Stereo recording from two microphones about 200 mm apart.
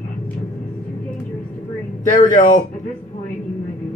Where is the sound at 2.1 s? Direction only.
35° left (ahead or behind).